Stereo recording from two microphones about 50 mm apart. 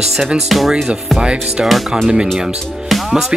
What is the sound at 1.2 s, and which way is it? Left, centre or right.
Music, centre.